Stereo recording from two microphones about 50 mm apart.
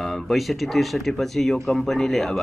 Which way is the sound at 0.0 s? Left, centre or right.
Centre.